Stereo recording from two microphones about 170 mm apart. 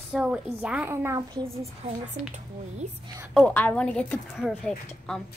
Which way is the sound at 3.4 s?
10° left (ahead or behind).